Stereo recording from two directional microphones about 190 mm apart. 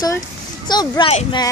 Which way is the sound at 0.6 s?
20° left (ahead or behind).